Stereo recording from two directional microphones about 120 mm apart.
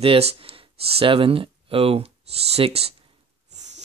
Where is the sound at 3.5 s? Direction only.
75° right (ahead or behind).